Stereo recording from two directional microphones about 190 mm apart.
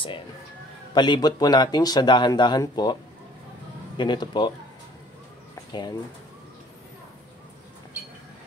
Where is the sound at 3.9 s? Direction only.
25° left (ahead or behind).